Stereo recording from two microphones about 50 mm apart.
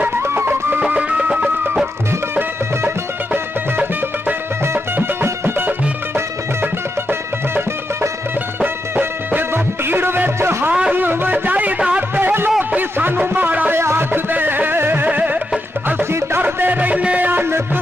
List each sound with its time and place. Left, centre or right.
0.2 s music: right
0.8 s music: right
4.3 s music: right
9.5 s music: right
12.2 s a sound: right
13.3 s music: right
13.7 s music: right
14.3 s music: right
15.0 s music: right
16.0 s music: right
16.4 s music: right
17.3 s music: right